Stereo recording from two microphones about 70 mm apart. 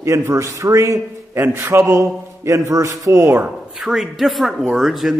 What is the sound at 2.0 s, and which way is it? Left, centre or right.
Speech, right.